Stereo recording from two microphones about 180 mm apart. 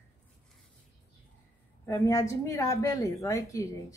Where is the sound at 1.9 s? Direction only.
15° left (ahead or behind).